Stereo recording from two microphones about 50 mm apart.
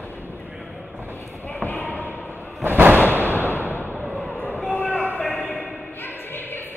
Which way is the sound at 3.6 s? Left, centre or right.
Left.